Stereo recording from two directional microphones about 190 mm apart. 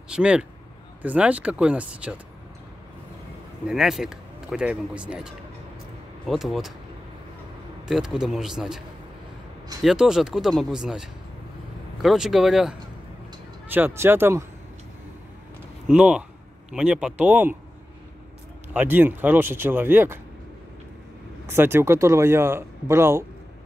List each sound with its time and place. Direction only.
0.1 s speech: 5° right (ahead or behind)
3.6 s speech: 5° right (ahead or behind)
7.9 s speech: centre (ahead or behind)
15.9 s speech: 5° right (ahead or behind)
18.7 s speech: 10° right (ahead or behind)
21.5 s speech: 10° right (ahead or behind)